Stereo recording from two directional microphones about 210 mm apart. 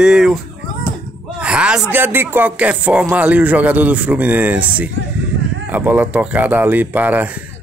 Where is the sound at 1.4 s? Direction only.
5° right (ahead or behind).